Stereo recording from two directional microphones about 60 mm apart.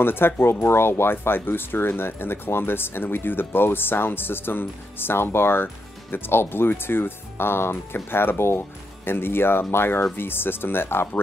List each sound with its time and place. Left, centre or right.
0.0 s speech: left